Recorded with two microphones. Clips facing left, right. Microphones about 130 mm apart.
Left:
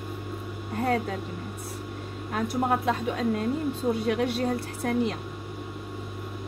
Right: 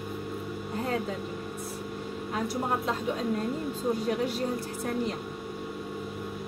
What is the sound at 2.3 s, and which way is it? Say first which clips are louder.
Speech: left 4 dB; 65° left (ahead or behind).